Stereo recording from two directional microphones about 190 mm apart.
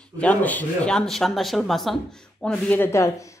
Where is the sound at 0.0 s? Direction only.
5° left (ahead or behind).